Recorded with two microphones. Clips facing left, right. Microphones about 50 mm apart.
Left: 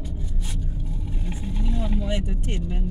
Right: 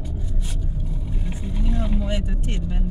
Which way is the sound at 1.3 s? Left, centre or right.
Centre.